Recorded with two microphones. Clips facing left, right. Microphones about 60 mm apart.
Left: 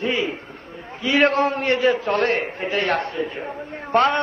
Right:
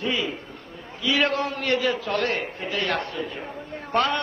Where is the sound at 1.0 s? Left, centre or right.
Left.